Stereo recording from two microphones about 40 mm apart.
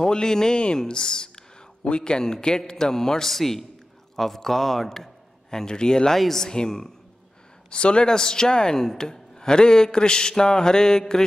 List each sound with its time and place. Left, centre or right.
0.0 s a man's voice: centre
6.1 s speech: centre